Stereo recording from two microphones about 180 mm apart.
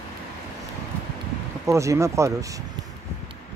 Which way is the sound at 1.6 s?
15° right (ahead or behind).